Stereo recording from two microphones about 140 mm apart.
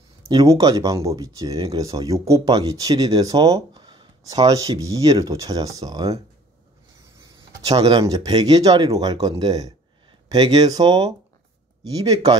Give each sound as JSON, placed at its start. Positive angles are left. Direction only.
{"t": 0.3, "sound": "speech", "side_deg": -30}
{"t": 7.6, "sound": "speech", "side_deg": -30}